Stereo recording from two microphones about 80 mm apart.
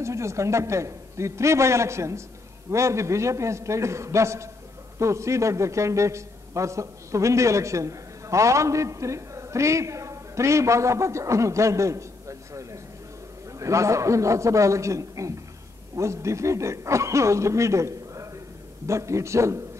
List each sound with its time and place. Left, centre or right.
0.0 s a man's voice: right